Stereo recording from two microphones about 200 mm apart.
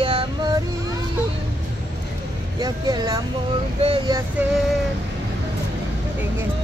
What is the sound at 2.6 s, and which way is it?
Speech, 20° right (ahead or behind).